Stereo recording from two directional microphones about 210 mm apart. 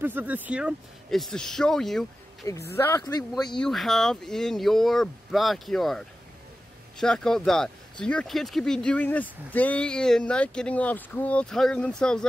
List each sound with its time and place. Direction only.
0.0 s speech: 10° right (ahead or behind)
2.7 s speech: 15° left (ahead or behind)
3.5 s speech: centre (ahead or behind)